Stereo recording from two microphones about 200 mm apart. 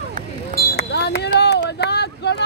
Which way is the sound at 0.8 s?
55° left (ahead or behind).